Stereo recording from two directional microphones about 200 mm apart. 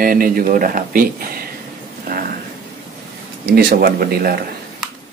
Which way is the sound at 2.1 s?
50° right (ahead or behind).